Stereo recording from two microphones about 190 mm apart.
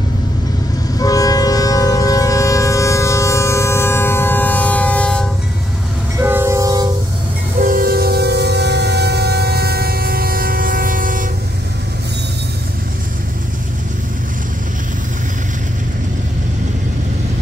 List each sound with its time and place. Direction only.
0.9 s train: 20° left (ahead or behind)
6.1 s train: 15° right (ahead or behind)
7.6 s music: 50° right (ahead or behind)